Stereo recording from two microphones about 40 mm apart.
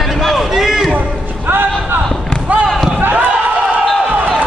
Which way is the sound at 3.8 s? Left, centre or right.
Centre.